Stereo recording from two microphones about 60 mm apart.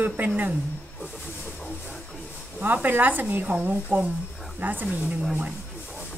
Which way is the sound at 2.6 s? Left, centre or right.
Right.